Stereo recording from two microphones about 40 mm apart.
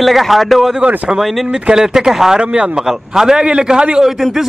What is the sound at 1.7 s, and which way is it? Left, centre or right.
Speech, centre.